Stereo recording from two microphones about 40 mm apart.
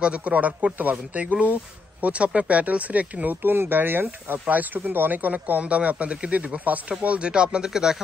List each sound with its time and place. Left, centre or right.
0.0 s speech: right
1.2 s speech: right
3.4 s speech: right
5.6 s speech: right
7.7 s speech: centre